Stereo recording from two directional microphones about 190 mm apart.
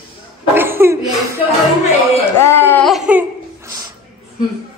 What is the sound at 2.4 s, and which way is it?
Speech, 10° left (ahead or behind).